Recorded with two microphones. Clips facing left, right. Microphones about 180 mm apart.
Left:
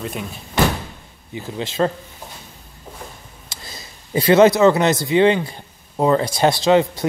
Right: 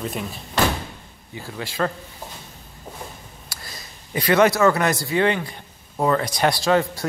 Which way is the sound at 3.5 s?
25° left (ahead or behind).